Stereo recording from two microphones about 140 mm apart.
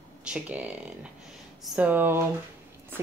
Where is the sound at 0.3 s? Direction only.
10° right (ahead or behind).